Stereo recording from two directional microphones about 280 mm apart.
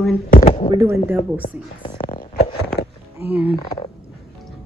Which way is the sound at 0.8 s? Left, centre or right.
Centre.